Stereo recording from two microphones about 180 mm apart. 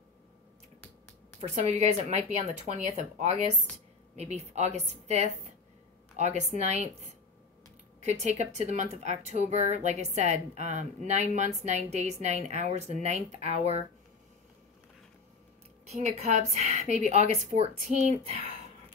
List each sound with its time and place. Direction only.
1.5 s speech: 40° right (ahead or behind)
15.9 s speech: 40° right (ahead or behind)